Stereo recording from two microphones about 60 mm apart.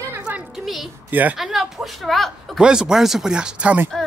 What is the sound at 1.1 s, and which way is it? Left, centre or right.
Speech, right.